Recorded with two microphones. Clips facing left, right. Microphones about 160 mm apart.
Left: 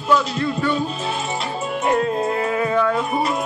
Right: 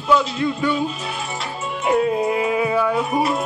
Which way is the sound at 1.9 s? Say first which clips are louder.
Right 2 dB; 5° right (ahead or behind).